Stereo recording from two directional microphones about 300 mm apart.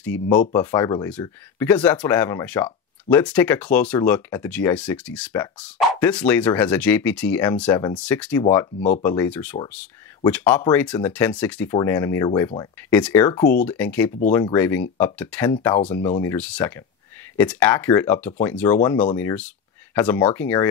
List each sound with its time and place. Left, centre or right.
0.5 s speech: centre
8.7 s speech: left
9.0 s speech: centre